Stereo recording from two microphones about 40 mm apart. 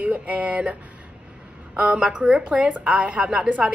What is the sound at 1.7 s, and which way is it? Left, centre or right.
A woman's voice, right.